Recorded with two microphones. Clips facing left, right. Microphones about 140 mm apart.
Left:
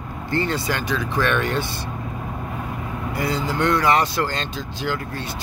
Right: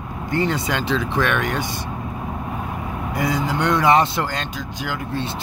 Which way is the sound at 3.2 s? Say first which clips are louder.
Right 1 dB; 15° right (ahead or behind).